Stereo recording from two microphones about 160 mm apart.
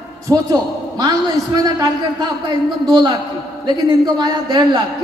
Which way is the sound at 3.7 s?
25° right (ahead or behind).